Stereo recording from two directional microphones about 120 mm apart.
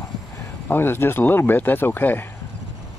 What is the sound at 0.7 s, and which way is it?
Speech, 20° left (ahead or behind).